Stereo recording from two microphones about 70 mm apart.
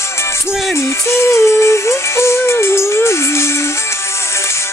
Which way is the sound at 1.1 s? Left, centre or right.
Left.